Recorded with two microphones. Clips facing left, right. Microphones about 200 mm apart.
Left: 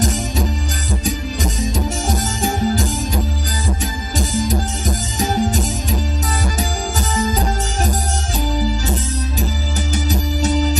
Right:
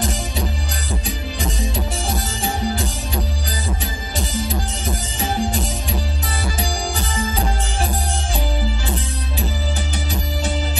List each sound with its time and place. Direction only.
1.0 s music: 45° left (ahead or behind)
4.2 s music: 45° left (ahead or behind)
10.4 s music: 40° left (ahead or behind)